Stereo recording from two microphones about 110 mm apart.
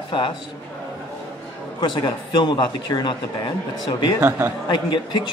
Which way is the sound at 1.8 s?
45° left (ahead or behind).